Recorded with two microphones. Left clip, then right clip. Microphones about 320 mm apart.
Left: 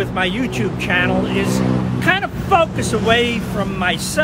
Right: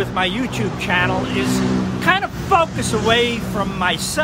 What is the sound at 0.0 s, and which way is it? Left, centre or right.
Speech, centre.